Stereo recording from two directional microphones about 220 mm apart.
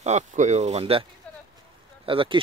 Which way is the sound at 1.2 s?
5° left (ahead or behind).